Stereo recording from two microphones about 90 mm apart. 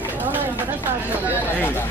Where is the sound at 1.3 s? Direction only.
25° left (ahead or behind).